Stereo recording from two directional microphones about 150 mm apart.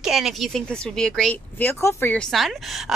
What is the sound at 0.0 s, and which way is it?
Speech, centre (ahead or behind).